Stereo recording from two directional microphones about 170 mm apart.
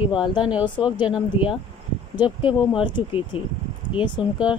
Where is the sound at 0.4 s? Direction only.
5° right (ahead or behind).